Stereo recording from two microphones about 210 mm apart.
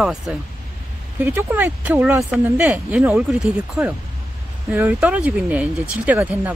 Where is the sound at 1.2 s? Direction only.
10° right (ahead or behind).